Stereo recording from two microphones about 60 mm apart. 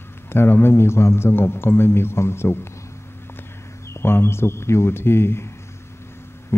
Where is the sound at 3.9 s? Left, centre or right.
Left.